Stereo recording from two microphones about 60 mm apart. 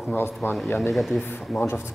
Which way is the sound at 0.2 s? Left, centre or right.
Left.